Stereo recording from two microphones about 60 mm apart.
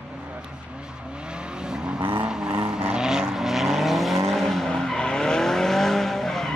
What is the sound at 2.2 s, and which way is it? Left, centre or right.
Vehicle, centre.